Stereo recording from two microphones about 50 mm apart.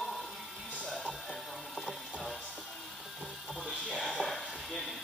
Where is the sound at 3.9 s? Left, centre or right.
Centre.